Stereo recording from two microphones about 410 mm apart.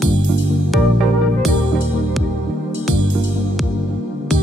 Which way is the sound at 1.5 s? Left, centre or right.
Left.